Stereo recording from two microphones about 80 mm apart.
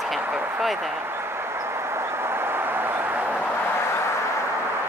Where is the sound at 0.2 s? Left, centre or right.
Right.